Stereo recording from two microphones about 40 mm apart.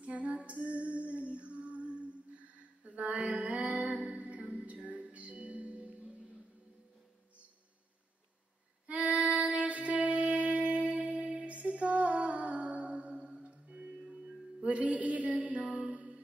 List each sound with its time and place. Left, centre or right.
0.0 s female singing: right
4.8 s music: right
8.8 s music: right
14.2 s music: right
14.8 s music: right